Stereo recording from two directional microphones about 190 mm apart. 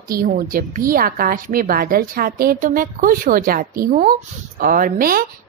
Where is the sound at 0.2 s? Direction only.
50° right (ahead or behind).